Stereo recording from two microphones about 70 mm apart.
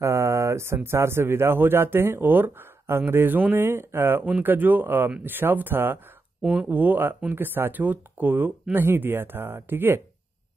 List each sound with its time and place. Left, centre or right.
0.0 s a sound: right
0.8 s speech: right
6.4 s speech: centre
6.8 s speech: right